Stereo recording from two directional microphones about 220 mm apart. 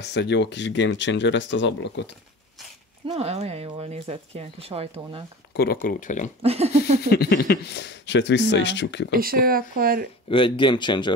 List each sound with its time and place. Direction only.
0.0 s speech: 50° left (ahead or behind)
3.1 s speech: 30° right (ahead or behind)
5.5 s speech: 45° left (ahead or behind)
6.4 s speech: 30° right (ahead or behind)
7.0 s speech: 45° left (ahead or behind)
9.1 s speech: 40° right (ahead or behind)
10.3 s speech: 20° left (ahead or behind)